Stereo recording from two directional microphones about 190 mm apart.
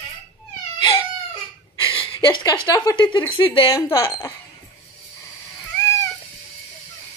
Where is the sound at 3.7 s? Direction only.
15° left (ahead or behind).